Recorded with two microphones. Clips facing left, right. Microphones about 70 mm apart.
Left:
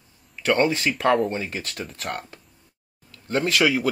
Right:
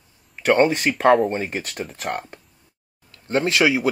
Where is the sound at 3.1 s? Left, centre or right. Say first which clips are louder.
Right 2 dB; right.